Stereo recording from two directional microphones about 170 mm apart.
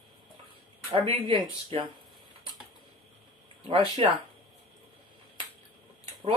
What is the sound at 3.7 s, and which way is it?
Speech, 30° right (ahead or behind).